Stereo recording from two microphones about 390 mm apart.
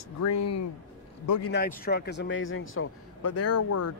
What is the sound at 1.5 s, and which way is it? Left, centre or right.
A man's voice, left.